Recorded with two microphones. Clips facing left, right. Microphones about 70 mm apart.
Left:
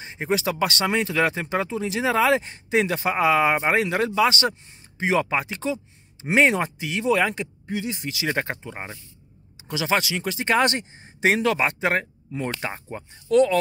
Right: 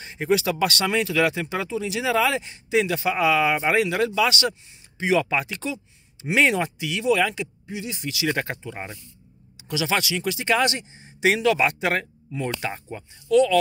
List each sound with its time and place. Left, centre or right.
0.0 s speech: left